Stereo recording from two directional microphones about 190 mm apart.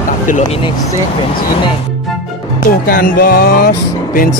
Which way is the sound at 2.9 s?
50° left (ahead or behind).